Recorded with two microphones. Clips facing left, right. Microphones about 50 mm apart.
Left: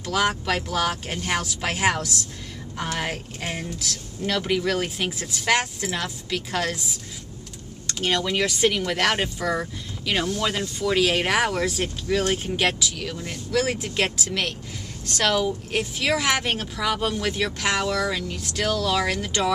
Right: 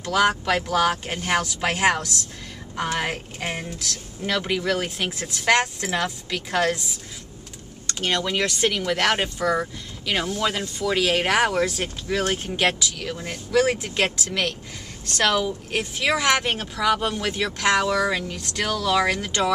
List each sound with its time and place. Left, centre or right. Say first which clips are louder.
0.0 s speech: right 3 dB; centre
4.3 s speech: even; centre
7.8 s speech: even; centre
13.2 s speech: right 1 dB; centre
13.6 s speech: right 3 dB; centre
17.8 s speech: right 2 dB; centre
18.3 s speech: left 1 dB; centre